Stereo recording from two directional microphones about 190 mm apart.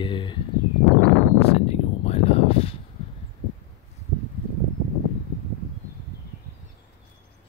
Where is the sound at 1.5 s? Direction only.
35° left (ahead or behind).